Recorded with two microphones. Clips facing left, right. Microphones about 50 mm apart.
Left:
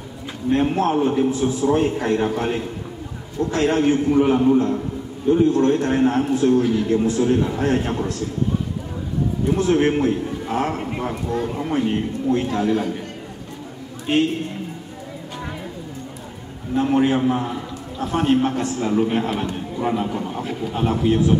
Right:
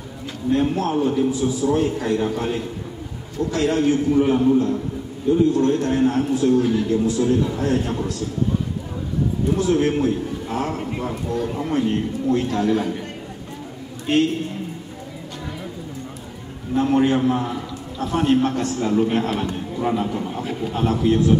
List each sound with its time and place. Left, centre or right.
0.5 s a man's voice: left
9.6 s a man's voice: left
11.5 s a man's voice: centre
14.1 s a man's voice: centre
16.7 s a man's voice: centre
18.0 s a man's voice: centre